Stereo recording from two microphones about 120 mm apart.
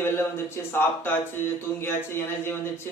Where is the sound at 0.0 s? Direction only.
20° left (ahead or behind).